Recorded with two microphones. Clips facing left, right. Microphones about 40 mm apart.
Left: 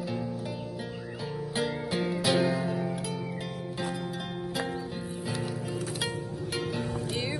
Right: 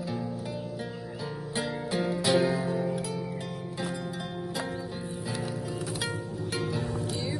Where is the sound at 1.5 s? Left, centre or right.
Centre.